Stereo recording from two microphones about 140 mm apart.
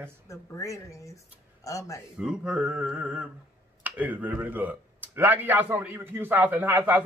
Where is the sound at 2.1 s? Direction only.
5° right (ahead or behind).